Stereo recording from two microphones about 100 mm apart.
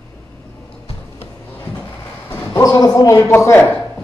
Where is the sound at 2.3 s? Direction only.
35° left (ahead or behind).